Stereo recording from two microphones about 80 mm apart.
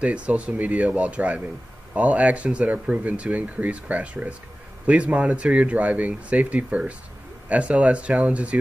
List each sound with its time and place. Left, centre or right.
0.0 s speech: centre